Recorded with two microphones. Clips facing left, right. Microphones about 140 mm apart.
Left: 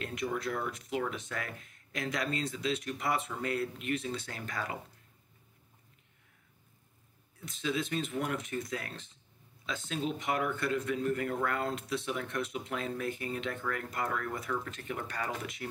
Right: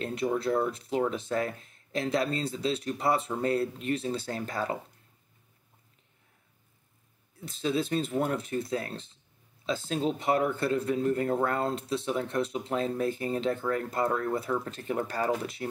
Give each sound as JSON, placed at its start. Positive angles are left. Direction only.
{"t": 0.0, "sound": "speech", "side_deg": -30}
{"t": 7.3, "sound": "speech", "side_deg": -35}